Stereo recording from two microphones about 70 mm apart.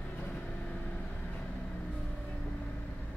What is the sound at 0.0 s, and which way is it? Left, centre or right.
Vehicle, left.